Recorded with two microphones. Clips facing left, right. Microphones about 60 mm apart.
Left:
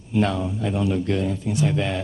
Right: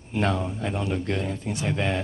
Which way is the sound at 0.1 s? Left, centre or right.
Right.